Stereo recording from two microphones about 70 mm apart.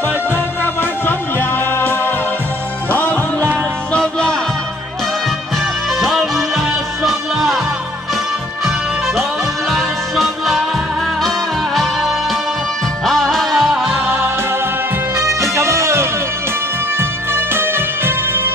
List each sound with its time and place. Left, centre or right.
0.7 s music: left
3.9 s music: centre
5.9 s music: centre
8.6 s music: centre
15.1 s music: right
17.3 s music: right